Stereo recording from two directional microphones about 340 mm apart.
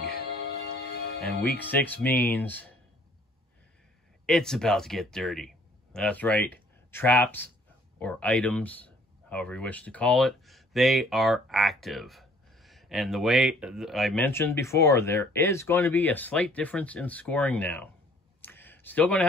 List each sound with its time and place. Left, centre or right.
0.0 s music: left
1.6 s speech: centre
4.3 s speech: centre
18.4 s a sound: centre